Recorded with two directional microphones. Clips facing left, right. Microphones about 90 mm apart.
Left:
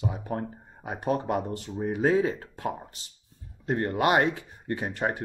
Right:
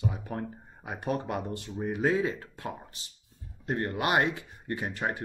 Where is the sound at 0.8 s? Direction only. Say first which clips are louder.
Left 4 dB; 30° left (ahead or behind).